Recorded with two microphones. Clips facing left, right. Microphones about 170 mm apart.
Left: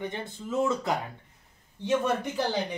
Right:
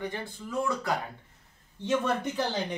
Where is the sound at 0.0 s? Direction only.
20° left (ahead or behind).